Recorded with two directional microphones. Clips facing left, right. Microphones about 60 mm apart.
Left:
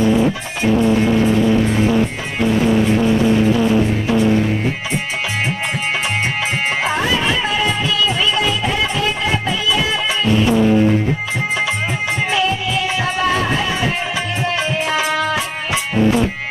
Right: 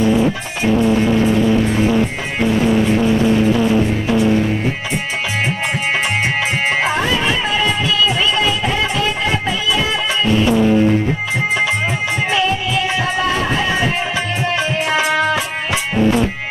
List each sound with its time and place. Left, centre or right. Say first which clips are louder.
6.2 s music: right 2 dB; centre
12.3 s music: right 1 dB; right
14.6 s music: right 2 dB; centre